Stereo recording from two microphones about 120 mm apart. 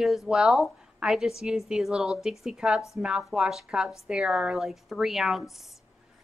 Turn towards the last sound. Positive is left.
turn(degrees=0)  # may be behind; listen again after turning